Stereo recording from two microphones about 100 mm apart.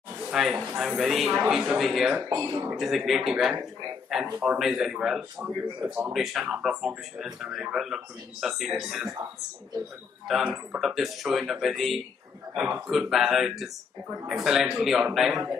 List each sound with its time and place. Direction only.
0.3 s speech: 5° right (ahead or behind)
2.2 s speech: 40° right (ahead or behind)
2.8 s speech: centre (ahead or behind)
6.1 s speech: 5° right (ahead or behind)
10.2 s speech: 5° right (ahead or behind)